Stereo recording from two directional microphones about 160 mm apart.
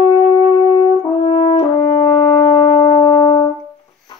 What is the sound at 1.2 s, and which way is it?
French horn, 40° left (ahead or behind).